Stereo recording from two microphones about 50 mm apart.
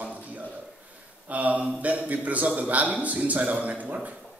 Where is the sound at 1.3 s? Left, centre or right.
Right.